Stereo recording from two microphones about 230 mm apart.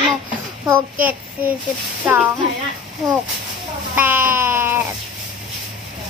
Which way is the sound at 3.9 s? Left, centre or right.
Centre.